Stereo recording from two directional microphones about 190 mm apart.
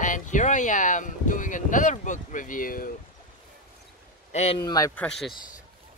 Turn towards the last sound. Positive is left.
turn(degrees=0)  # may be behind; listen again after turning